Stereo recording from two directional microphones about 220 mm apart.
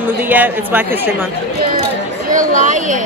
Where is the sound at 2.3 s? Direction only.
35° right (ahead or behind).